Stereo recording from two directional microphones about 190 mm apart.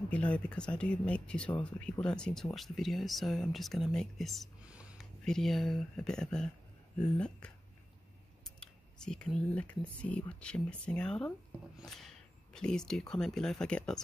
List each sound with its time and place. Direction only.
0.1 s speech: 5° left (ahead or behind)
8.5 s speech: 5° left (ahead or behind)